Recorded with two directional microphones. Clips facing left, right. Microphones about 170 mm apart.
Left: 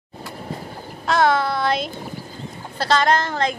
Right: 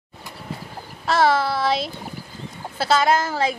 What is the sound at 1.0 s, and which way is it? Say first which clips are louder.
Child singing: even; centre (ahead or behind).